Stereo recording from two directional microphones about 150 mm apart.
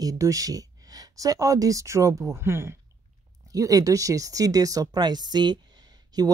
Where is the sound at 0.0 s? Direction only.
20° right (ahead or behind).